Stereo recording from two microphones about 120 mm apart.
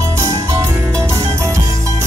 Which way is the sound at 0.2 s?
25° right (ahead or behind).